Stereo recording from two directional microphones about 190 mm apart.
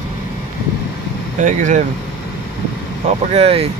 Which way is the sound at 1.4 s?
40° right (ahead or behind).